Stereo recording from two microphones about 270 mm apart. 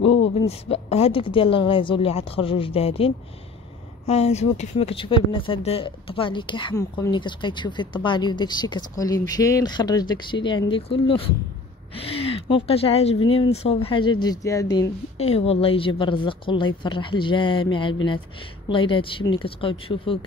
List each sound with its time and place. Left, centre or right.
0.0 s a sound: left
0.5 s a woman's voice: left
12.4 s a woman's voice: centre